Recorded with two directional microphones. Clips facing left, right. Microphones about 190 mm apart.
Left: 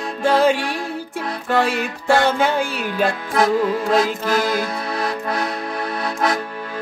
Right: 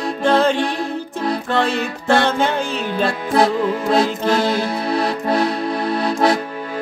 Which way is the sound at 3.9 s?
30° right (ahead or behind).